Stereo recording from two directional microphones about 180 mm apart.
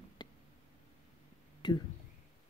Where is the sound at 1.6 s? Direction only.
25° left (ahead or behind).